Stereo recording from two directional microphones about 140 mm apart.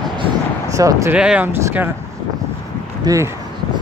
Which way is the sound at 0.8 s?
25° right (ahead or behind).